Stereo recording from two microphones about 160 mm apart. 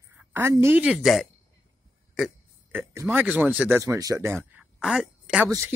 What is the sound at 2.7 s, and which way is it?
Speech, 15° right (ahead or behind).